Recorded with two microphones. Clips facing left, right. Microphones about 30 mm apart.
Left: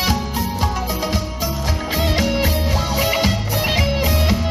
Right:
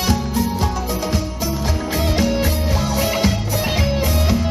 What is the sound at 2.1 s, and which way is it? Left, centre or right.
Music, centre.